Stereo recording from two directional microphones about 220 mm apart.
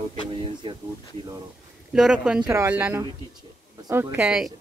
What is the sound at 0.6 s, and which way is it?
Speech, 20° right (ahead or behind).